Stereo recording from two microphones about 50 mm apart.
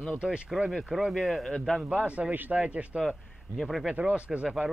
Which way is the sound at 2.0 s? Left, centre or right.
Right.